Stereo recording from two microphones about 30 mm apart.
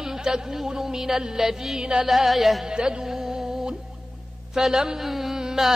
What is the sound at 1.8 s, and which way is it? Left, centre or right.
Music, right.